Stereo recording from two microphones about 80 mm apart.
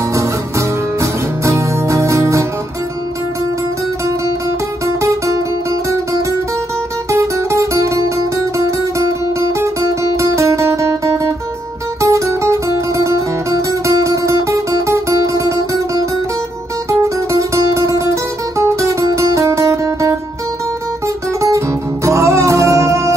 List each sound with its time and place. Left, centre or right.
0.1 s music: right
4.8 s music: right
12.0 s guitar: right
17.0 s music: right
21.4 s music: right